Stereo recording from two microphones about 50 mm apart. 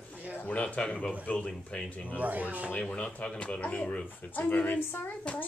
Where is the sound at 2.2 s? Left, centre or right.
Right.